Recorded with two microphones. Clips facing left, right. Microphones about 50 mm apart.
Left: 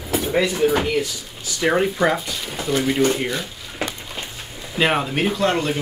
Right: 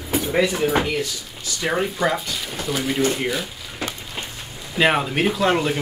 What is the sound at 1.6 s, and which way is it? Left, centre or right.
Speech, centre.